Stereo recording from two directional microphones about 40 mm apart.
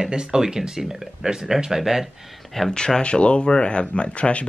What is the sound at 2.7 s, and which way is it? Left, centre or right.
Speech, left.